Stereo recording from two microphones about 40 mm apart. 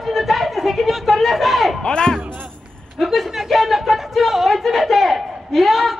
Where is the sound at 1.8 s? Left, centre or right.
Centre.